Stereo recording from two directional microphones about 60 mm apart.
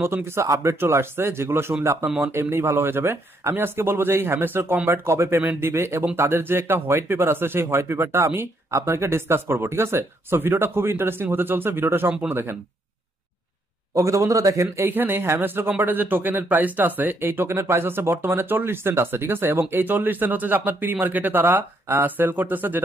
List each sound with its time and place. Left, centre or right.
0.0 s speech: right
0.5 s a man's voice: right
0.7 s speech: right
2.0 s speech: right
2.3 s speech: right
5.4 s speech: right
13.9 s a man's voice: right
14.8 s speech: right